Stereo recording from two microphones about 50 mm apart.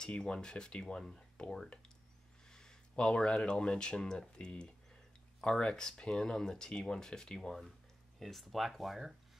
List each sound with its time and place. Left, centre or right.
0.0 s speech: centre